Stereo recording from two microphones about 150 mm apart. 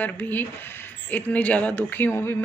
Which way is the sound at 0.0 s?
10° left (ahead or behind).